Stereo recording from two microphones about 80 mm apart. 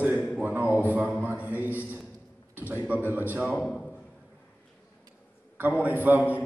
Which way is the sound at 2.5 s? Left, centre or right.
Right.